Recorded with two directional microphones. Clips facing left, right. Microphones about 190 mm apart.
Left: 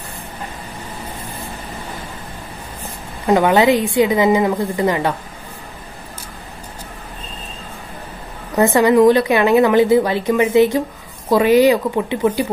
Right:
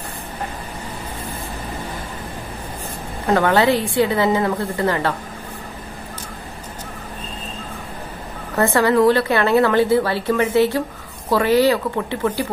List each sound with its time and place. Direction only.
3.3 s speech: 15° left (ahead or behind)
8.5 s speech: 15° left (ahead or behind)